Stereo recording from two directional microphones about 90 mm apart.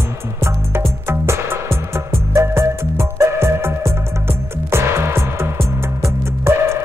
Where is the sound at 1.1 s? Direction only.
30° right (ahead or behind).